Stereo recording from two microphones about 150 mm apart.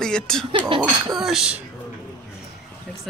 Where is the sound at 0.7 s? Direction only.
35° right (ahead or behind).